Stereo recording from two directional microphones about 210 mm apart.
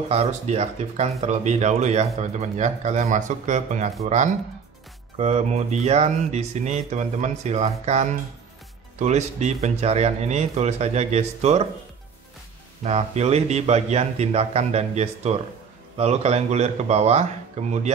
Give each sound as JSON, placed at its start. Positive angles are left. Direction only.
{"t": 0.1, "sound": "speech", "side_deg": -30}
{"t": 12.8, "sound": "speech", "side_deg": -30}